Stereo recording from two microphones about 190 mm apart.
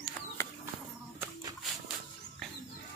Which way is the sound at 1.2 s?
20° right (ahead or behind).